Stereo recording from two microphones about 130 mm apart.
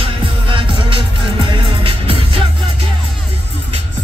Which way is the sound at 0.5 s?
40° right (ahead or behind).